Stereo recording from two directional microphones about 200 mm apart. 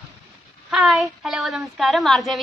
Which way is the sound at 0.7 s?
Centre (ahead or behind).